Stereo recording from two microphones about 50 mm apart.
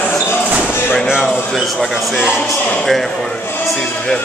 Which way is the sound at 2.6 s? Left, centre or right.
Left.